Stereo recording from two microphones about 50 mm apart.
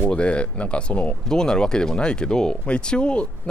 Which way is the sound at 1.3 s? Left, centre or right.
Centre.